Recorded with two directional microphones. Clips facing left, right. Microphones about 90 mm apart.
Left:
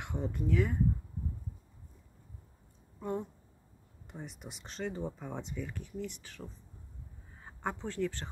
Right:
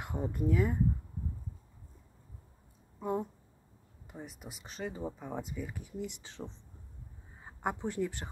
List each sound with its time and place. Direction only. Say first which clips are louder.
0.0 s a sound: right 1 dB; 5° right (ahead or behind)
0.4 s speech: right 1 dB; 10° right (ahead or behind)
3.0 s speech: right 2 dB; 10° right (ahead or behind)